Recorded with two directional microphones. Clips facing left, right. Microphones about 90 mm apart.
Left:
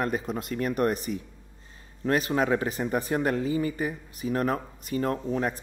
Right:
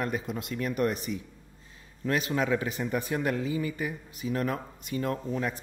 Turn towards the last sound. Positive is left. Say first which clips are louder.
# left 3 dB
turn(degrees=40)  # may be behind; listen again after turning